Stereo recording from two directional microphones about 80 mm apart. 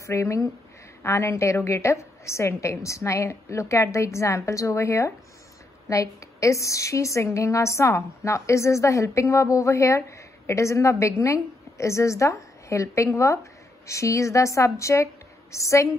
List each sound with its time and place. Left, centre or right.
0.0 s a woman's voice: left